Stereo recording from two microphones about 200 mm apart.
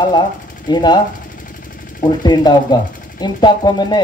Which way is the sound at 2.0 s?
20° left (ahead or behind).